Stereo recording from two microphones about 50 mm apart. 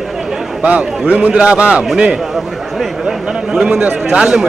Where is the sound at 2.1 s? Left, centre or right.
Centre.